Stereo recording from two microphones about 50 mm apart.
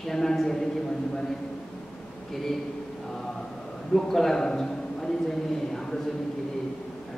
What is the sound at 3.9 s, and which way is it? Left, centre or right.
Speech, centre.